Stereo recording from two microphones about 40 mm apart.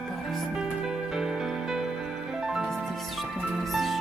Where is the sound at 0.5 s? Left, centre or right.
Centre.